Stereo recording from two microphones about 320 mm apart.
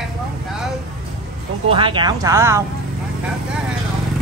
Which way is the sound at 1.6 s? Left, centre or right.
Centre.